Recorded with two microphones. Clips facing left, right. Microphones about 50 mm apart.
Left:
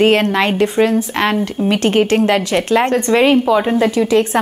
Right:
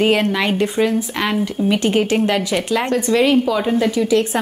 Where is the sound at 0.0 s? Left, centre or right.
Left.